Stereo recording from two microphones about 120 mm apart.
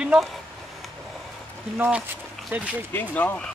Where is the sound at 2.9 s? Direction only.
15° left (ahead or behind).